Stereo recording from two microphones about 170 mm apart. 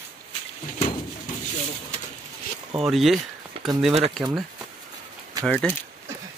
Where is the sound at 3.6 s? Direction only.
35° right (ahead or behind).